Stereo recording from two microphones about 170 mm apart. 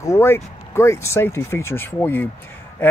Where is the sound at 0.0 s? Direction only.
15° left (ahead or behind).